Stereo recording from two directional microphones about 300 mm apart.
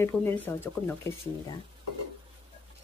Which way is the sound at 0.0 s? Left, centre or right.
Centre.